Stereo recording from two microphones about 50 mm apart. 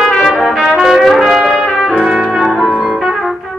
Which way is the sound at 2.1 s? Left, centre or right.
Centre.